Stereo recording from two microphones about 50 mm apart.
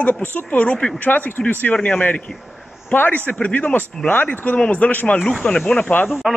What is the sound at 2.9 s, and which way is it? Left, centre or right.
Speech, left.